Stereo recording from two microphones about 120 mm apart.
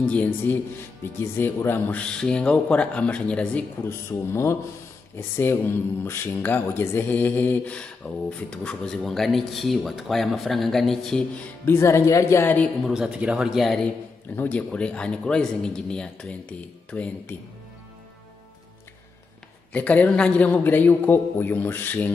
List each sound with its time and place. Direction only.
0.0 s speech: 10° left (ahead or behind)
4.1 s speech: 25° left (ahead or behind); by 11.2 s 5° left (ahead or behind)
11.6 s speech: 20° left (ahead or behind)
12.8 s speech: 5° right (ahead or behind)
14.3 s speech: 15° left (ahead or behind)
19.7 s speech: 10° left (ahead or behind)